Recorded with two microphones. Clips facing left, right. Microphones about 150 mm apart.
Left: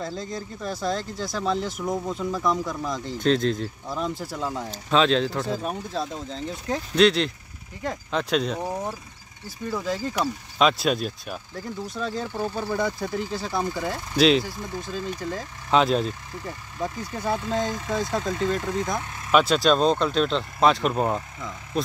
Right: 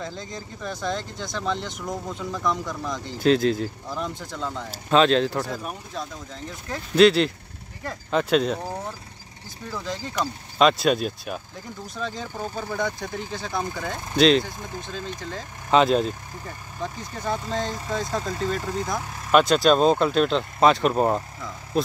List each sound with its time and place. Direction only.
0.0 s speech: centre (ahead or behind)
4.6 s speech: 5° right (ahead or behind)
5.5 s speech: 30° left (ahead or behind)
7.0 s speech: centre (ahead or behind)
9.7 s speech: 5° left (ahead or behind)
15.7 s speech: centre (ahead or behind)